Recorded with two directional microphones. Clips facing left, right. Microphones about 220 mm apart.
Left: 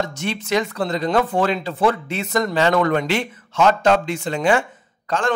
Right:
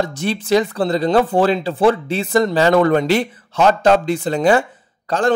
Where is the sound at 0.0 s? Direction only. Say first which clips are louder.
Right 4 dB; 35° right (ahead or behind).